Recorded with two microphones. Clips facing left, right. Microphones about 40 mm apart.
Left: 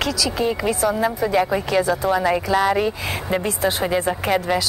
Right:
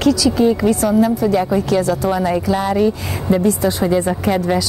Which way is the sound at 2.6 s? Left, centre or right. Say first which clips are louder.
Right 2 dB; left.